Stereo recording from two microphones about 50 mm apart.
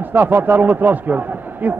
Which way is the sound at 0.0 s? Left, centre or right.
Right.